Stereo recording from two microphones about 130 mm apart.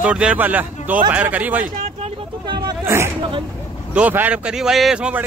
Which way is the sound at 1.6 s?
55° right (ahead or behind).